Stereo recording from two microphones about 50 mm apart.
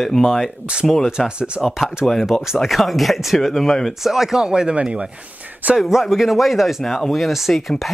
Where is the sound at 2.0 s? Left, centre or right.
Centre.